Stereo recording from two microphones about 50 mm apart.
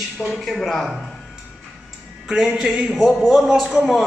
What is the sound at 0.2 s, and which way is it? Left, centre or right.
Speech, left.